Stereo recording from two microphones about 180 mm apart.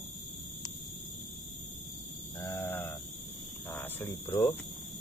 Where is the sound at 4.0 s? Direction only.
25° left (ahead or behind).